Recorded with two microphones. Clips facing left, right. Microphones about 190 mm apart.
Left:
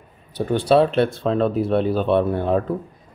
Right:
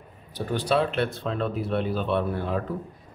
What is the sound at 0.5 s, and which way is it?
Speech, 30° left (ahead or behind).